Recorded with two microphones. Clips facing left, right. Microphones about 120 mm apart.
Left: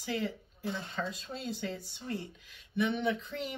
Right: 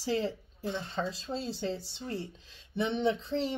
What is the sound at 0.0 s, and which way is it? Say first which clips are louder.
Speech: right 4 dB; 30° right (ahead or behind).